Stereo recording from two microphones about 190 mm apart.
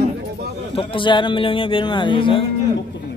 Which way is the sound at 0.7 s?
25° left (ahead or behind).